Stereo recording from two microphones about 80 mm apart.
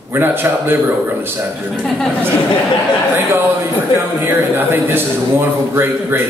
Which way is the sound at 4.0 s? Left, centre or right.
Right.